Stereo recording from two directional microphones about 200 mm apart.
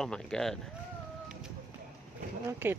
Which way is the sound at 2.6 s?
10° right (ahead or behind).